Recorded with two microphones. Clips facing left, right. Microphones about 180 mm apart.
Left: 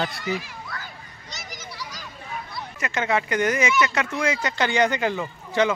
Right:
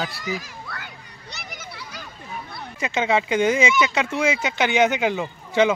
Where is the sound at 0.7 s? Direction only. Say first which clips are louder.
Even; 65° right (ahead or behind).